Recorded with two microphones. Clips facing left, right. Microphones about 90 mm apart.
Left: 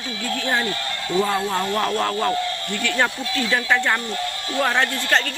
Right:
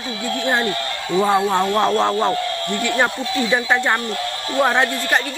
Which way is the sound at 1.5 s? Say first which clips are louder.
Right 5 dB; 25° right (ahead or behind).